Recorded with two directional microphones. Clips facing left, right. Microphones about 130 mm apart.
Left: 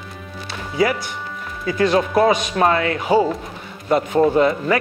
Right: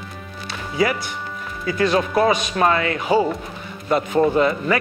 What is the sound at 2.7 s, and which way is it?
Speech, 35° left (ahead or behind).